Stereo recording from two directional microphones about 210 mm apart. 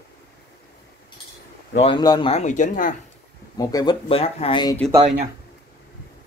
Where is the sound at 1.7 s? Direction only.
25° left (ahead or behind).